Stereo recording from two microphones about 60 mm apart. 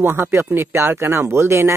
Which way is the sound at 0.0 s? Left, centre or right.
Right.